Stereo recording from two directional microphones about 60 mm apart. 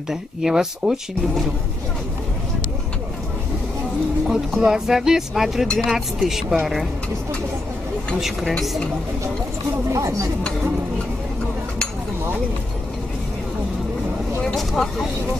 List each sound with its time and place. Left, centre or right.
0.1 s speech: centre
4.3 s speech: centre
8.2 s speech: centre
9.8 s speech: right
14.7 s speech: centre